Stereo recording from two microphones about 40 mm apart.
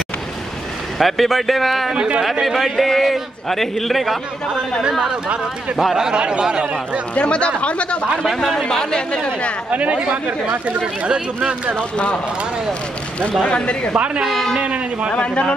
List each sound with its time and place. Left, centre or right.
0.9 s a man's voice: centre
5.9 s speech: right
7.2 s speech: left
8.4 s speech: centre
8.9 s speech: left
9.7 s speech: right
13.4 s speech: left
13.9 s speech: right
14.3 s a man's voice: centre
14.6 s speech: right
15.1 s speech: left